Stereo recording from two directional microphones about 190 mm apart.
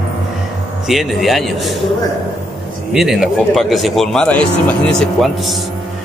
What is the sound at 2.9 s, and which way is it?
Speech, centre (ahead or behind).